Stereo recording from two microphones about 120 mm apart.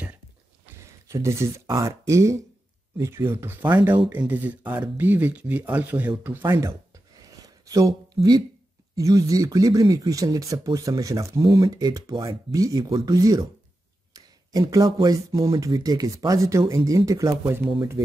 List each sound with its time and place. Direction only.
0.8 s speech: 25° right (ahead or behind)
6.4 s speech: 25° right (ahead or behind)
7.2 s a sound: 30° right (ahead or behind)
8.9 s speech: 30° right (ahead or behind)